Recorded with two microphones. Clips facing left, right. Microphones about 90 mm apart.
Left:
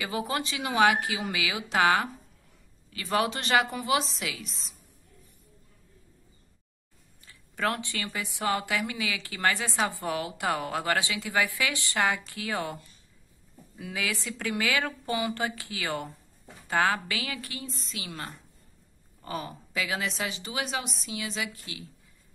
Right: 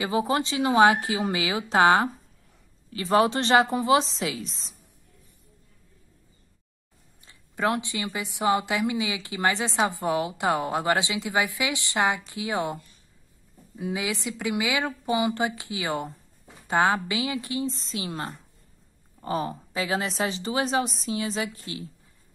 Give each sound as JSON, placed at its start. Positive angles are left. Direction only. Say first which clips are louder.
{"t": 0.0, "sound": "a woman's voice", "louder": "right 6 dB", "side_deg": -25}
{"t": 7.2, "sound": "speech", "louder": "right 3 dB", "side_deg": -20}
{"t": 13.7, "sound": "a woman's voice", "louder": "right 4 dB", "side_deg": -20}